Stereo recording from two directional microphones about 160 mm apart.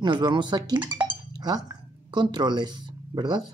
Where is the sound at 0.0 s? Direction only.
30° right (ahead or behind).